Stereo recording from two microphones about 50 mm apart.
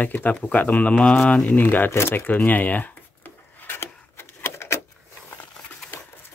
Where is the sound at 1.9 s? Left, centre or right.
Left.